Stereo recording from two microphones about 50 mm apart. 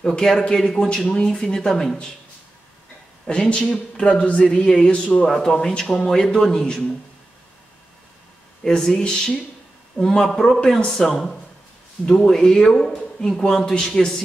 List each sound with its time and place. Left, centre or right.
0.1 s a man's voice: centre
3.3 s speech: left
4.0 s a man's voice: centre
4.3 s speech: left
5.2 s a man's voice: centre
8.6 s a man's voice: centre